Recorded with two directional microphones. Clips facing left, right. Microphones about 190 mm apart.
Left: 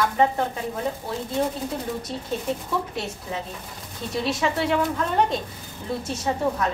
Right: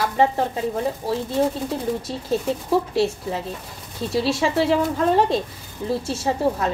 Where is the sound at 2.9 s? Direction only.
30° right (ahead or behind).